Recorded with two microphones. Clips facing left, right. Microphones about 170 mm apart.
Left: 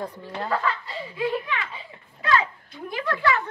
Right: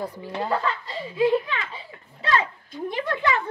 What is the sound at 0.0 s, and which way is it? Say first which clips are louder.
Speech: right 2 dB; 10° right (ahead or behind).